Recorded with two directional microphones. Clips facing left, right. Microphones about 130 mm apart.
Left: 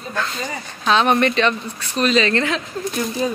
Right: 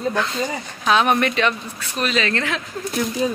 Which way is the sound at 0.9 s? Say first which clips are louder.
Left 1 dB; 10° right (ahead or behind).